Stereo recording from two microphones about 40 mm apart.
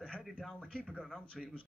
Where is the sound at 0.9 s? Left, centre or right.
Centre.